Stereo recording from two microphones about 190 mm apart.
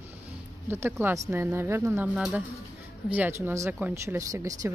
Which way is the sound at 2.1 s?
Centre (ahead or behind).